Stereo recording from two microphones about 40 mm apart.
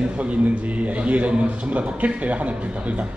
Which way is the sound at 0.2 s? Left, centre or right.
Right.